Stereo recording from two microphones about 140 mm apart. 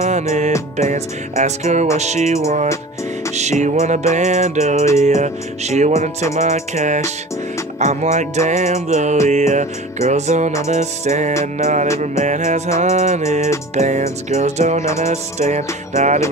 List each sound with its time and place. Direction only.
0.0 s music: 60° right (ahead or behind)